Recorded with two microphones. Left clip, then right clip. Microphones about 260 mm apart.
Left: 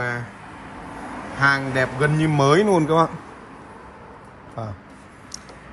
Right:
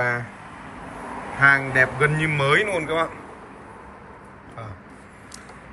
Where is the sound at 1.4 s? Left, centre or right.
Centre.